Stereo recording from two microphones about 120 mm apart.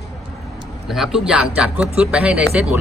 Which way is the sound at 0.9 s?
5° right (ahead or behind).